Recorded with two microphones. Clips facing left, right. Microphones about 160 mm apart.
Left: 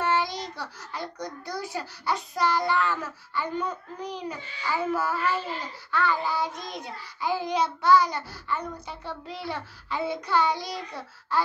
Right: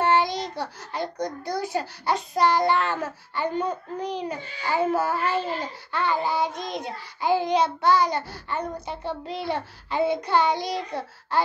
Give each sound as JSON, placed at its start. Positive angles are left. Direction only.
{"t": 0.2, "sound": "a child's voice", "side_deg": -20}